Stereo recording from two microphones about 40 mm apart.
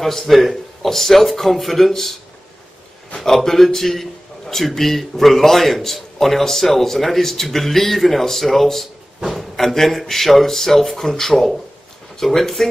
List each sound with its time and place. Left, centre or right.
0.0 s speech: centre
3.2 s a man's voice: centre